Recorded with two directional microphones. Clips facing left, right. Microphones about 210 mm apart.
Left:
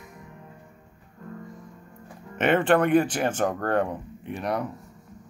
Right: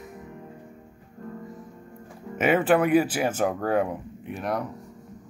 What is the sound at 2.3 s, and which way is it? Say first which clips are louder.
Speech: even; 5° right (ahead or behind).